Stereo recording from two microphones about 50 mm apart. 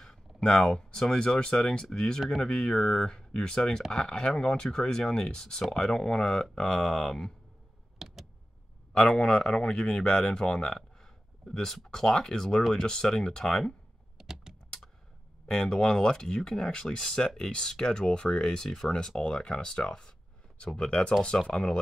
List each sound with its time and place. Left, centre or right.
0.4 s speech: centre
8.0 s a sound: centre
8.9 s speech: centre
14.1 s typing: centre
15.4 s speech: centre